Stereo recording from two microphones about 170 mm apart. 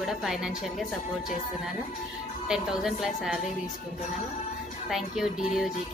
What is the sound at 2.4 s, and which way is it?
Speech, 5° right (ahead or behind).